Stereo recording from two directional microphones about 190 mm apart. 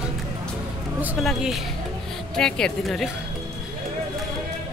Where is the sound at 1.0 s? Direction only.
Centre (ahead or behind).